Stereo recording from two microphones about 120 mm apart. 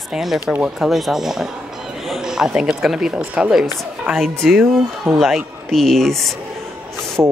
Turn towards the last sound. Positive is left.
turn(degrees=-20)  # may be behind; listen again after turning